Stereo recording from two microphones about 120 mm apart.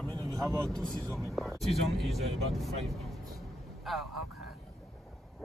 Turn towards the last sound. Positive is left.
turn(degrees=0)  # may be behind; listen again after turning